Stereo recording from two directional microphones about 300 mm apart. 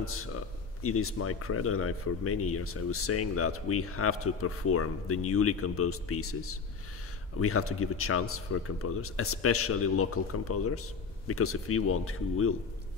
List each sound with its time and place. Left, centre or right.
0.0 s speech: left